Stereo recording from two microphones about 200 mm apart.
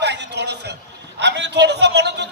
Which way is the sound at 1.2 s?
60° right (ahead or behind).